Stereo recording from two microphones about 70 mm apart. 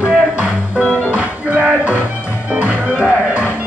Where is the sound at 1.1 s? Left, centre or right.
Right.